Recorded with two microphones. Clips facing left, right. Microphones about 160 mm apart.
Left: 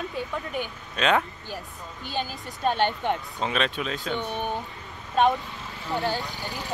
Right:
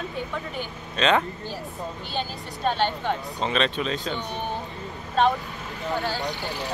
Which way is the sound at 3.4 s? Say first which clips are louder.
Right 2 dB; 5° left (ahead or behind).